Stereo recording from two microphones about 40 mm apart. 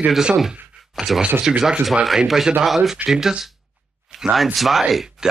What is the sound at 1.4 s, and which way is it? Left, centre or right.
Speech, centre.